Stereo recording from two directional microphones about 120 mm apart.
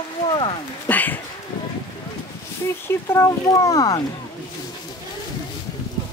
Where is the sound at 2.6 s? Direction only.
20° left (ahead or behind).